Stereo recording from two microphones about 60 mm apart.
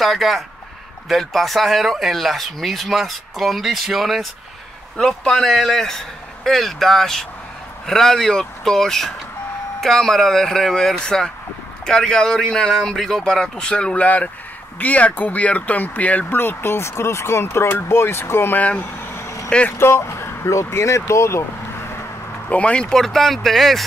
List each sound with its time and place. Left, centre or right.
0.0 s speech: centre
4.9 s a man's voice: centre
5.3 s a man's voice: centre; by 16.3 s left
16.3 s speech: left
18.6 s speech: left
19.1 s vehicle: left
19.8 s speech: left
22.5 s a man's voice: centre